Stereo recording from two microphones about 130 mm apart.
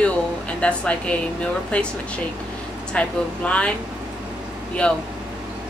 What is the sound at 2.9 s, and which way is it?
Speech, 10° left (ahead or behind).